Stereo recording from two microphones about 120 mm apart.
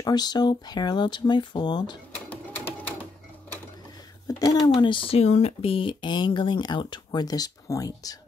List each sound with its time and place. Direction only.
0.0 s speech: 35° left (ahead or behind)
2.2 s a sound: 15° left (ahead or behind)
4.4 s speech: 30° left (ahead or behind)
4.7 s speech: 45° left (ahead or behind)